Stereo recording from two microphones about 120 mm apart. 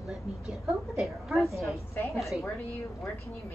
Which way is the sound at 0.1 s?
Centre (ahead or behind).